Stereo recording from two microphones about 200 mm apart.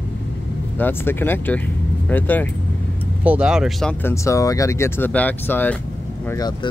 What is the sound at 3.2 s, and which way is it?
Speech, 5° right (ahead or behind).